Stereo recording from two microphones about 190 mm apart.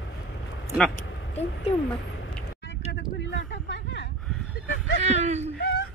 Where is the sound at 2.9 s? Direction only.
65° left (ahead or behind).